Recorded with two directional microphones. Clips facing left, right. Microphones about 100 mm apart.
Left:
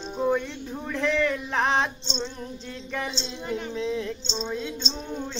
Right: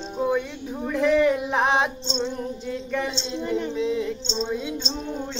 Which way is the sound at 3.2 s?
Centre (ahead or behind).